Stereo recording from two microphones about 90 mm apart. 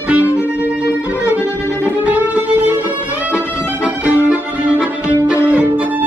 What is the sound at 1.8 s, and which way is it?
Music, 20° right (ahead or behind).